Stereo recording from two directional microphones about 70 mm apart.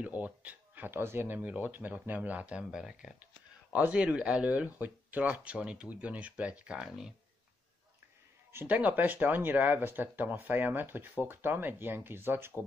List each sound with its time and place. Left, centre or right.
0.0 s speech: right
1.4 s speech: right
3.7 s speech: centre
8.6 s speech: right